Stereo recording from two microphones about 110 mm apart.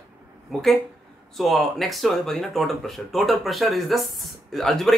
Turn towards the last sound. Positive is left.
turn(degrees=5)  # may be behind; listen again after turning